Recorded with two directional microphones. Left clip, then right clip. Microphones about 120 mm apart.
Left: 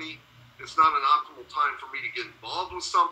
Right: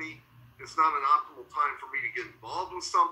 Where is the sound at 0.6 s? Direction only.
15° left (ahead or behind).